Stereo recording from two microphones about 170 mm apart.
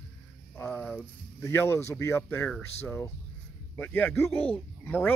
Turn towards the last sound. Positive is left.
turn(degrees=10)  # may be behind; listen again after turning